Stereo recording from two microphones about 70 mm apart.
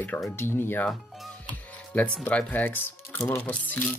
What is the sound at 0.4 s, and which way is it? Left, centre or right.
Speech, left.